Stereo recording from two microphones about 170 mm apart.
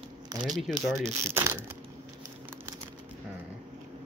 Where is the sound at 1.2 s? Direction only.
15° right (ahead or behind).